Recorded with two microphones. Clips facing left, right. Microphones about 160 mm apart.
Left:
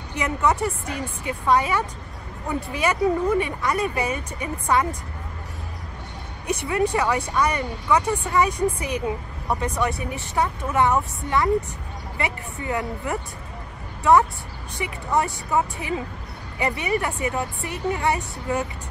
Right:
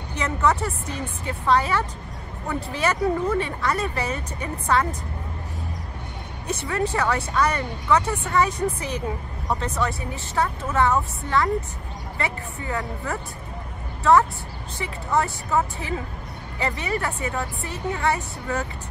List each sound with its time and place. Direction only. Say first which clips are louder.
0.2 s speech: left 1 dB; 15° left (ahead or behind)
6.4 s speech: left 3 dB; 15° left (ahead or behind)
14.8 s speech: even; 15° left (ahead or behind)